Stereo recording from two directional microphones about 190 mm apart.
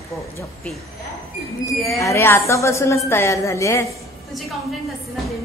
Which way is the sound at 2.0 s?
15° left (ahead or behind).